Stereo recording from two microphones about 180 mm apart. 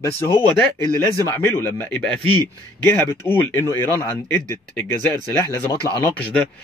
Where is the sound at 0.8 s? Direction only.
15° left (ahead or behind).